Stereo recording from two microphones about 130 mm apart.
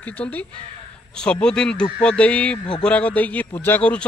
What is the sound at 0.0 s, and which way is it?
A man's voice, 10° left (ahead or behind).